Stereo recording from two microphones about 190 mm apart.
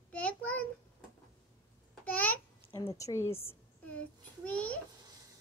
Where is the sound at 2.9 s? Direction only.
15° left (ahead or behind).